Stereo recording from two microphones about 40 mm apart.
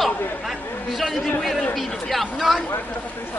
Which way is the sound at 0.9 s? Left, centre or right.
Centre.